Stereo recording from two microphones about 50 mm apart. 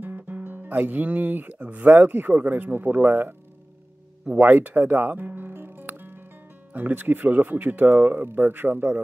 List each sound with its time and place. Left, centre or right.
0.0 s speech: right
4.3 s music: right
6.7 s speech: right